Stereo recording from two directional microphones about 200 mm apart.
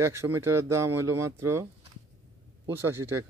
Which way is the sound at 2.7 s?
10° right (ahead or behind).